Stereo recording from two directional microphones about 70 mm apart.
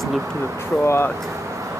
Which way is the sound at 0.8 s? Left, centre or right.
Left.